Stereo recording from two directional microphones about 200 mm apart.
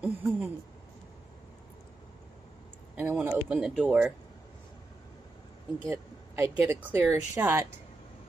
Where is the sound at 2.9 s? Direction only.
5° right (ahead or behind).